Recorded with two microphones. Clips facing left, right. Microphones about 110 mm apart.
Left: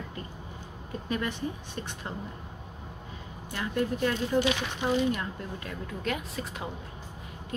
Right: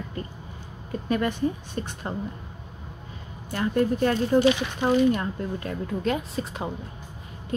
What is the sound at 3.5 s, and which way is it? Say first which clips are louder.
Speech: right 6 dB; 40° right (ahead or behind).